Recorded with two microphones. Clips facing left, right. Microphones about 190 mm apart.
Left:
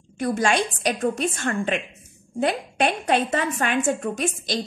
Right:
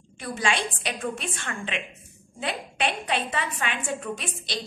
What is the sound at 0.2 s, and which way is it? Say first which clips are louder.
A woman's voice: left 6 dB; 45° left (ahead or behind).